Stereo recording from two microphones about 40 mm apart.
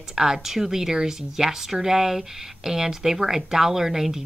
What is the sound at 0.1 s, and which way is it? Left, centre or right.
Speech, centre.